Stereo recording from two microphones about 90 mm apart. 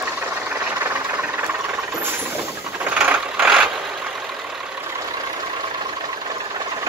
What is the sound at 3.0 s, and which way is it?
Vehicle, 15° right (ahead or behind).